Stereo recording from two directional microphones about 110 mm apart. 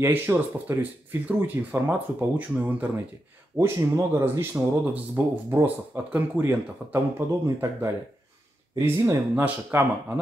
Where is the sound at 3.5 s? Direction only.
25° right (ahead or behind).